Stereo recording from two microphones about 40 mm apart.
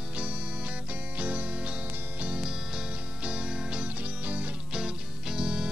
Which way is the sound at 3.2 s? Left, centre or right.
Right.